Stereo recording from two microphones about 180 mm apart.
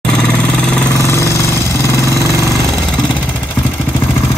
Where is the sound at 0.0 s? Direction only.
5° left (ahead or behind).